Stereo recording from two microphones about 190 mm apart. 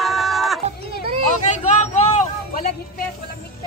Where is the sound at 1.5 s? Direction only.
40° left (ahead or behind).